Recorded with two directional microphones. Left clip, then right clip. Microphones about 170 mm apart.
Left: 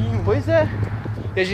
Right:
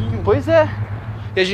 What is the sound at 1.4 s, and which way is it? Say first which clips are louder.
Speech: right 4 dB; 35° right (ahead or behind).